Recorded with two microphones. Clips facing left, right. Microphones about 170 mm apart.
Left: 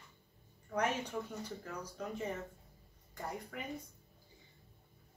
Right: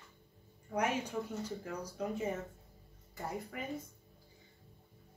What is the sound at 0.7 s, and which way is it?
Speech, 10° right (ahead or behind).